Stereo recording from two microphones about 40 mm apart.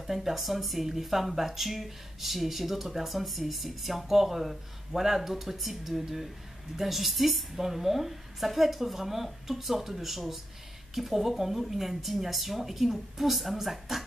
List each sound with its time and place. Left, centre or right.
0.0 s speech: centre